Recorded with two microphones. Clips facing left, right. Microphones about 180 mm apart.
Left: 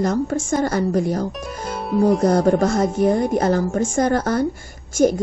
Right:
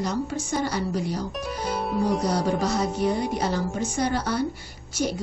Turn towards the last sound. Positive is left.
turn(degrees=50)  # may be behind; listen again after turning